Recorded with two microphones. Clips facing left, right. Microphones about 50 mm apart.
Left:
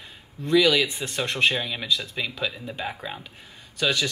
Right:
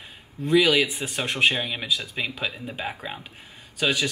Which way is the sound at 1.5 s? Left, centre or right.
Right.